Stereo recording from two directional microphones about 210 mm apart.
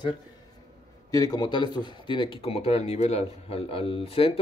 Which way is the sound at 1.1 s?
15° left (ahead or behind).